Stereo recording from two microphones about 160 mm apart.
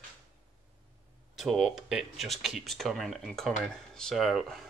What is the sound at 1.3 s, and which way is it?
Speech, centre (ahead or behind).